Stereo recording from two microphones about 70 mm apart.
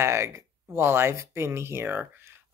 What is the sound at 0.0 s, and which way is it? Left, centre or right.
Speech, right.